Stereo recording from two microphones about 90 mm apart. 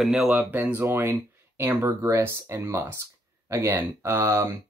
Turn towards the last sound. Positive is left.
turn(degrees=-30)  # may be behind; listen again after turning